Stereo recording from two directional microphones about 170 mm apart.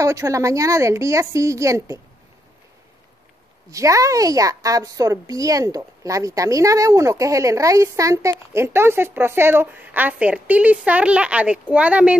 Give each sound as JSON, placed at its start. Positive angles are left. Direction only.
{"t": 0.0, "sound": "a woman's voice", "side_deg": -20}
{"t": 3.7, "sound": "a woman's voice", "side_deg": -20}